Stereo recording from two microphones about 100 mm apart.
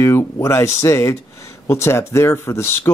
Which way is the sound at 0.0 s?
30° left (ahead or behind).